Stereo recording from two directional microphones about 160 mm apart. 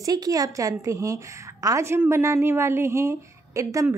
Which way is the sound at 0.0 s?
20° right (ahead or behind).